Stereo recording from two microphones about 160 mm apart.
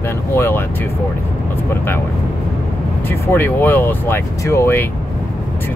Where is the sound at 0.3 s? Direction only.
15° left (ahead or behind).